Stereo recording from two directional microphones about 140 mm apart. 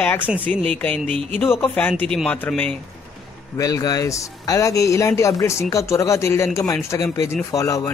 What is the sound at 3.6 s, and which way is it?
Speech, 25° left (ahead or behind).